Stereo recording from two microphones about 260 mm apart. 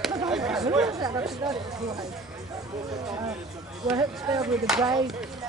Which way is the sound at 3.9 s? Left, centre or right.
Centre.